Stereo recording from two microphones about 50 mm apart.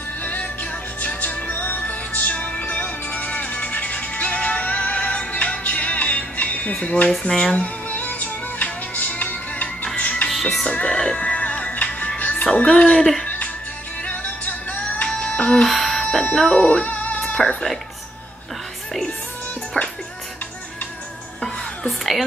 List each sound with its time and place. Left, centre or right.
0.2 s music: left
7.1 s music: centre
10.4 s music: centre
10.7 s speech: left
11.0 s music: left
12.5 s speech: left
12.9 s music: centre
13.2 s music: left
15.0 s music: centre
15.6 s a sound: centre
16.5 s music: left
17.2 s speech: centre
21.8 s music: centre